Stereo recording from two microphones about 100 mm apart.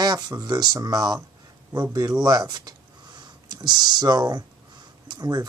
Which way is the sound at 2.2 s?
40° right (ahead or behind).